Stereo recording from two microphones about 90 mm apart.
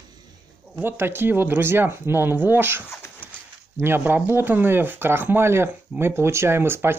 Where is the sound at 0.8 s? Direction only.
25° right (ahead or behind).